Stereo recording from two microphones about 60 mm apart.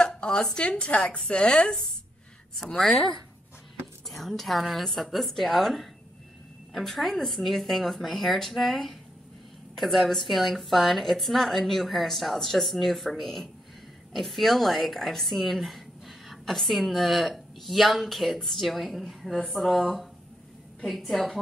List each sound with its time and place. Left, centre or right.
0.0 s a woman's voice: centre
4.1 s speech: centre